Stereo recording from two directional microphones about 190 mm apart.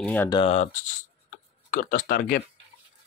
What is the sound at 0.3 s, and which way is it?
Speech, 30° left (ahead or behind).